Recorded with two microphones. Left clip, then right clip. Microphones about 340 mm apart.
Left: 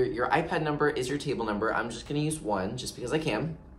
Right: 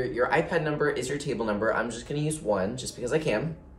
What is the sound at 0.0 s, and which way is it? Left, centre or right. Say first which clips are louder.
Speech: right 1 dB; centre.